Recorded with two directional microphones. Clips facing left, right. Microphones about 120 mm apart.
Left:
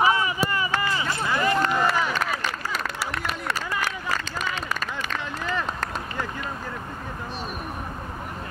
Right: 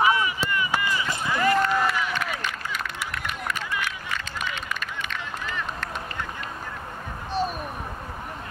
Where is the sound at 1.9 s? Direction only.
35° left (ahead or behind).